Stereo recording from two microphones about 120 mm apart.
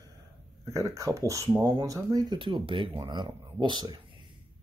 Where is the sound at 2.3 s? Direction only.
45° right (ahead or behind).